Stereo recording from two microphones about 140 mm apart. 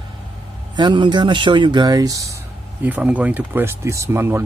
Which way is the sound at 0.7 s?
35° right (ahead or behind).